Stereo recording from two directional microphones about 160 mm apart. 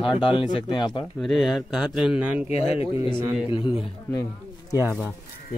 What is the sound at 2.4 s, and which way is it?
Speech, 45° left (ahead or behind).